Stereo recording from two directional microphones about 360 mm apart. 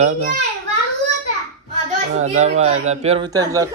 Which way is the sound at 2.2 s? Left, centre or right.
Centre.